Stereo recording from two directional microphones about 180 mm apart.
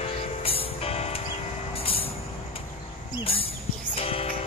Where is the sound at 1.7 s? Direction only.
30° left (ahead or behind).